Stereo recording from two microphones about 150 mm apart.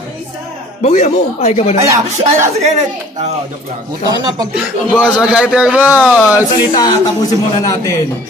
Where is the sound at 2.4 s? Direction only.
50° right (ahead or behind).